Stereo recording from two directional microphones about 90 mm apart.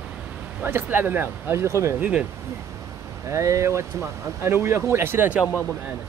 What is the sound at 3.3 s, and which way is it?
Speech, 35° right (ahead or behind).